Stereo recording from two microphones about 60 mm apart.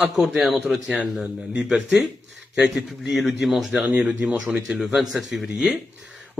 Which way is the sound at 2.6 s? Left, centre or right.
Centre.